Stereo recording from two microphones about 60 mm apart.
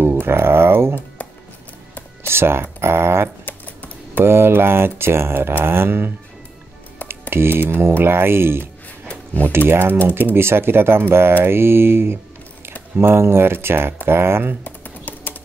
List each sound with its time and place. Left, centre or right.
0.0 s speech: right
2.2 s speech: right
2.8 s a sound: right
3.4 s typing: left
4.2 s speech: right
7.1 s a sound: right
8.0 s speech: right
14.6 s typing: left